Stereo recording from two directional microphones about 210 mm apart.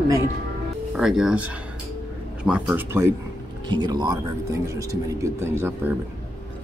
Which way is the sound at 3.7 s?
20° right (ahead or behind).